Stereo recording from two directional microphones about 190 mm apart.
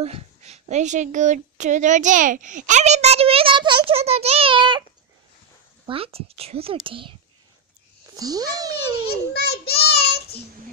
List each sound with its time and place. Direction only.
0.0 s a woman's voice: 35° right (ahead or behind)
5.9 s speech: 30° right (ahead or behind)
8.2 s speech: 20° right (ahead or behind)
9.3 s child singing: 55° left (ahead or behind)